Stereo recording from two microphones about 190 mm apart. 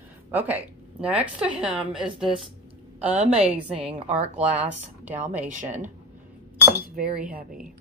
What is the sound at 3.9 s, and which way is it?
Speech, 35° right (ahead or behind).